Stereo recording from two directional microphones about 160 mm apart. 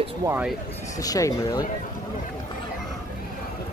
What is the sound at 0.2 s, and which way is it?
Speech, 20° right (ahead or behind).